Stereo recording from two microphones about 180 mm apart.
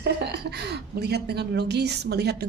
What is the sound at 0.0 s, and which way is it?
A woman's voice, 70° right (ahead or behind).